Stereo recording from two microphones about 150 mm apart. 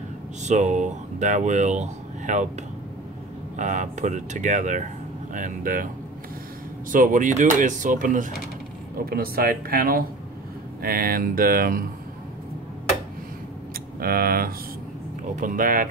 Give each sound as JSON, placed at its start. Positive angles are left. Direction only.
{"t": 0.4, "sound": "speech", "side_deg": -50}
{"t": 3.5, "sound": "speech", "side_deg": -55}
{"t": 6.9, "sound": "speech", "side_deg": -65}
{"t": 8.9, "sound": "speech", "side_deg": -80}
{"t": 10.8, "sound": "speech", "side_deg": -85}
{"t": 14.0, "sound": "speech", "side_deg": -80}
{"t": 15.3, "sound": "speech", "side_deg": -65}